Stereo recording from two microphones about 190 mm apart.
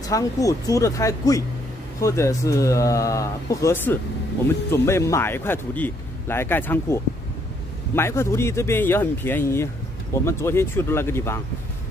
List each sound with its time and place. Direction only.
0.1 s speech: 15° left (ahead or behind)